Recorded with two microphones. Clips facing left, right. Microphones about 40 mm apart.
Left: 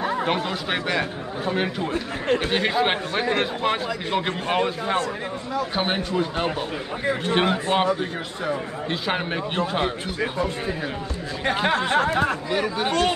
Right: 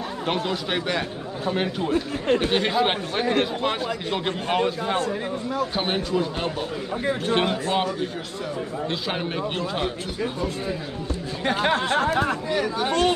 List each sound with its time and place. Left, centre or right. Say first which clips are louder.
0.3 s a man's voice: left 1 dB; centre
9.6 s a man's voice: left 6 dB; left
12.4 s a man's voice: even; left